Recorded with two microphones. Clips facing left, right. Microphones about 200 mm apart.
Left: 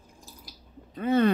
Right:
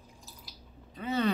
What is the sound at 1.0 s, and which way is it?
Speech, 55° left (ahead or behind).